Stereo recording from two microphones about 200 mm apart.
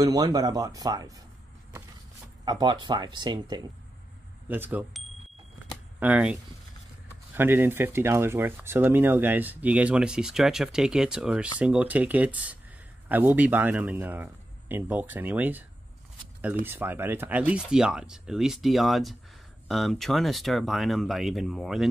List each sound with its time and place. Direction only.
0.0 s speech: 20° right (ahead or behind)
2.4 s speech: 20° right (ahead or behind)
4.5 s speech: 10° right (ahead or behind)
7.3 s speech: 10° right (ahead or behind)
16.6 s speech: 10° right (ahead or behind)